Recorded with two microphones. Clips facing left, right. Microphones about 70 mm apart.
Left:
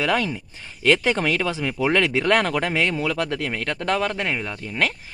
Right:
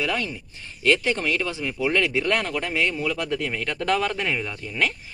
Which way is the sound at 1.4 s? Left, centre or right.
Left.